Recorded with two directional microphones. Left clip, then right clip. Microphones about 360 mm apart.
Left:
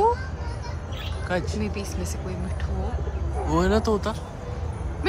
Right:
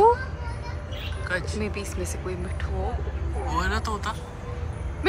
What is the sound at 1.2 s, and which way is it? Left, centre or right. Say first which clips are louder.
Speech: left 1 dB; centre.